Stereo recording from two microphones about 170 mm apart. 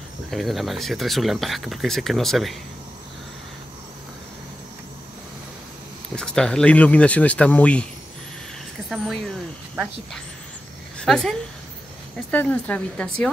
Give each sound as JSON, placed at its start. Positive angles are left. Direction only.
{"t": 0.3, "sound": "speech", "side_deg": 0}
{"t": 6.1, "sound": "speech", "side_deg": 5}
{"t": 8.8, "sound": "a woman's voice", "side_deg": 0}